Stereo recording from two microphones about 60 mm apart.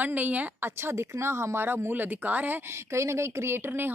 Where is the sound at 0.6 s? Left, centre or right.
Right.